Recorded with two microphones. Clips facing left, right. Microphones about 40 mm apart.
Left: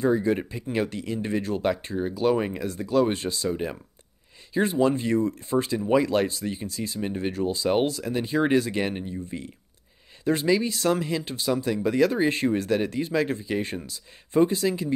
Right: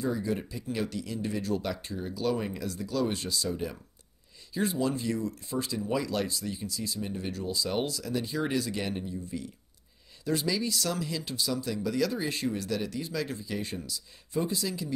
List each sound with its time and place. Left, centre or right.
0.0 s speech: left